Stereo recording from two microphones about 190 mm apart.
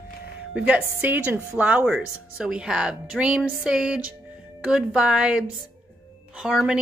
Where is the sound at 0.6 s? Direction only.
5° right (ahead or behind).